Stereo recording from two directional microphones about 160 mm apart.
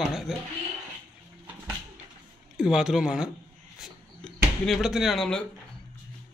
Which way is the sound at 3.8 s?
Centre (ahead or behind).